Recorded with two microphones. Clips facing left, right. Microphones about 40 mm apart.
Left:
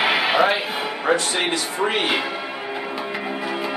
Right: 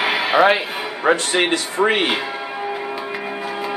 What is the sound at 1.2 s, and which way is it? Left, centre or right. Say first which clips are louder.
Speech: right 4 dB; right.